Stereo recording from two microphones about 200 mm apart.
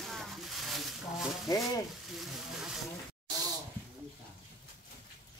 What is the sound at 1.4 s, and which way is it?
Speech, 15° left (ahead or behind).